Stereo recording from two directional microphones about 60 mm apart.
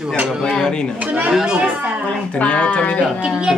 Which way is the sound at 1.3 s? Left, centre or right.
Centre.